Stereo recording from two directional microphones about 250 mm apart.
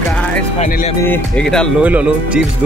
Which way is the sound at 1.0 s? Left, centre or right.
Centre.